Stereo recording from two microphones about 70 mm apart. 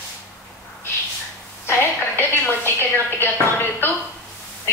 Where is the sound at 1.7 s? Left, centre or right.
Left.